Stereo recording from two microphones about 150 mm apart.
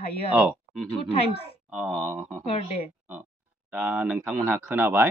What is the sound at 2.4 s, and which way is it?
Speech, 40° left (ahead or behind).